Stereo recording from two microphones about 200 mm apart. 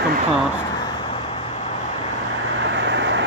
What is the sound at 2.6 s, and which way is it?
Vehicle, 60° right (ahead or behind).